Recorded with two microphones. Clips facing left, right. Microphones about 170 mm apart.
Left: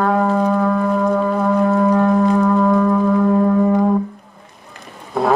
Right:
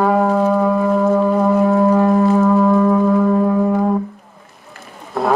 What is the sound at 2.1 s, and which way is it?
Music, 5° right (ahead or behind).